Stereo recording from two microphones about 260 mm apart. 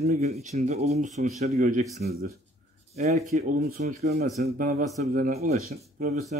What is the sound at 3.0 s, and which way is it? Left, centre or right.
Speech, right.